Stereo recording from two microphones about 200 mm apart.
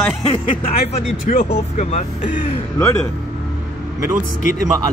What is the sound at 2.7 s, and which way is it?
Speech, 15° left (ahead or behind).